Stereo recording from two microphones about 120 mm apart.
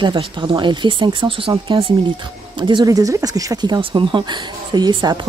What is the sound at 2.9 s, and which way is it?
Speech, 30° right (ahead or behind).